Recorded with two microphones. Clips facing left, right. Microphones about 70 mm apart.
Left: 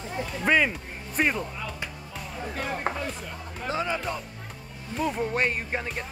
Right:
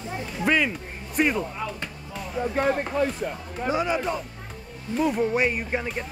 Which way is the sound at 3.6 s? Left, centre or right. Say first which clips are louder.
Right 4 dB; centre.